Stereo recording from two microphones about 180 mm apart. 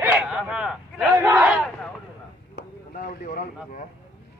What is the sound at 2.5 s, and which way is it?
Speech, 50° left (ahead or behind).